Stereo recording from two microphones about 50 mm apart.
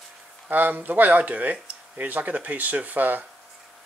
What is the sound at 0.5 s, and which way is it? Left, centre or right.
Speech, right.